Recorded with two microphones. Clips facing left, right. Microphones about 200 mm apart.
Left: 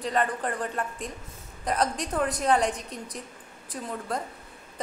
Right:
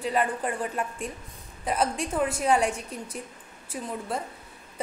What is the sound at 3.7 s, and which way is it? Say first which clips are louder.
Speech: right 1 dB; 10° right (ahead or behind).